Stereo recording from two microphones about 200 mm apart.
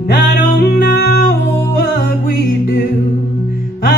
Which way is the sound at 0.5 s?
50° left (ahead or behind).